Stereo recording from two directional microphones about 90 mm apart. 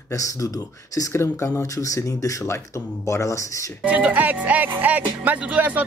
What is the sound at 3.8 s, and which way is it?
Speech, 15° right (ahead or behind).